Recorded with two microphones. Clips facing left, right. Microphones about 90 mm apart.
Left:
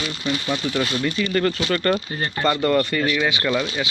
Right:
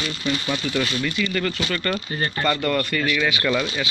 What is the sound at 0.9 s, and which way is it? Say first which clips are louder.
Speech: left 2 dB; 35° left (ahead or behind).